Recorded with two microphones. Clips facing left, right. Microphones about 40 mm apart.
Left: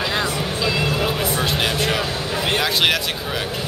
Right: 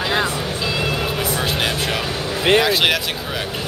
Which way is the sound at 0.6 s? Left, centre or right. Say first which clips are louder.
Left 2 dB; centre.